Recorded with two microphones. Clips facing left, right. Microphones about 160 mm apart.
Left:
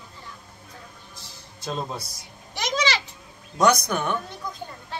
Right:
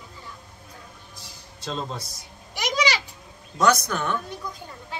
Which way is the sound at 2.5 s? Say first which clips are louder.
Right 1 dB; 15° right (ahead or behind).